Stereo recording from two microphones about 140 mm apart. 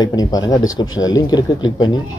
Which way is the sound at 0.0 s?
25° left (ahead or behind).